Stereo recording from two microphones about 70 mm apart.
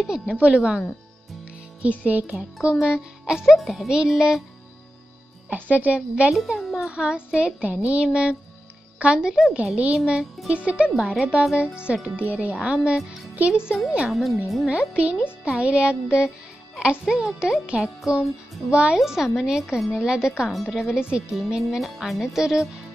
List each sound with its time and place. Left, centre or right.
0.0 s a child's voice: centre
1.8 s music: right
2.8 s a child's voice: centre
5.5 s music: right
6.3 s a child's voice: centre
9.5 s music: centre
9.9 s a child's voice: centre
14.7 s a child's voice: centre